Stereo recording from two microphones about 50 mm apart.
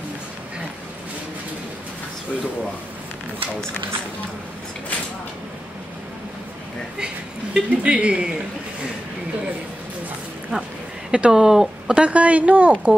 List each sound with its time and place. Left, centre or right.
7.5 s speech: right
10.5 s speech: right
12.0 s speech: right